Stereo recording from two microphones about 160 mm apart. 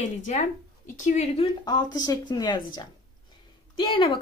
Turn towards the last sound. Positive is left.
turn(degrees=35)  # may be behind; listen again after turning